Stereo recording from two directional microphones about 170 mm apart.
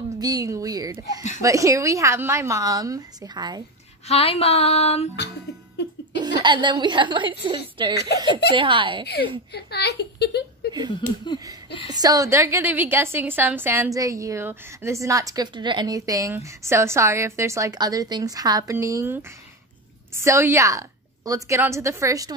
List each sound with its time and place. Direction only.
0.2 s a woman's voice: 20° right (ahead or behind)
4.1 s a sound: 35° left (ahead or behind)
6.1 s a woman's voice: 25° right (ahead or behind)
8.1 s speech: 75° left (ahead or behind)
8.5 s a woman's voice: 30° right (ahead or behind)
9.5 s a child's voice: 75° left (ahead or behind)
11.9 s a woman's voice: 20° right (ahead or behind)